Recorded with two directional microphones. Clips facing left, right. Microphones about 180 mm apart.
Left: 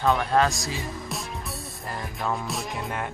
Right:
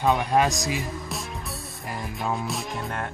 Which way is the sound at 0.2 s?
15° right (ahead or behind).